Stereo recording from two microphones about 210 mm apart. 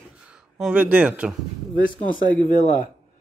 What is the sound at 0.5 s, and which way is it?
Speech, 5° right (ahead or behind).